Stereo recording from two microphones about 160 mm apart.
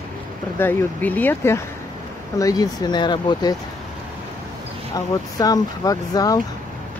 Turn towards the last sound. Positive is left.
turn(degrees=25)  # may be behind; listen again after turning